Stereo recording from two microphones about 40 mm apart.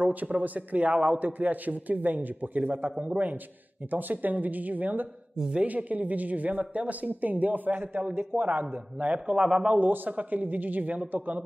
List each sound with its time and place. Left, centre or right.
0.0 s a man's voice: right
3.9 s a man's voice: right
9.3 s a man's voice: right
9.8 s speech: right